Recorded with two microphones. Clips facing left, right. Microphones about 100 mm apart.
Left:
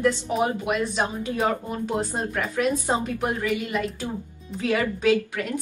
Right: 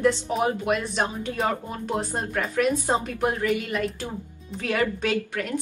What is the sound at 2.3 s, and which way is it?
Speech, 15° left (ahead or behind).